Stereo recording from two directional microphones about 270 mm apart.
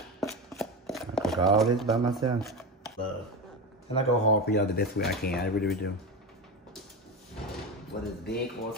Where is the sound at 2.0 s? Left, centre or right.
Centre.